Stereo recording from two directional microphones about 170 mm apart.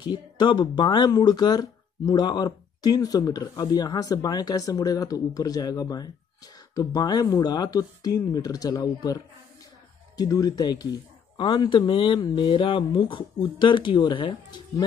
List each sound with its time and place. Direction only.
0.1 s speech: 25° left (ahead or behind)